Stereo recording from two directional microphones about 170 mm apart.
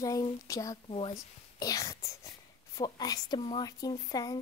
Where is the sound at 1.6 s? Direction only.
20° left (ahead or behind).